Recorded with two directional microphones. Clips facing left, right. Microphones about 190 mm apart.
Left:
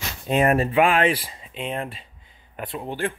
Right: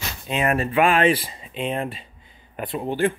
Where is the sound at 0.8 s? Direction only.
15° left (ahead or behind).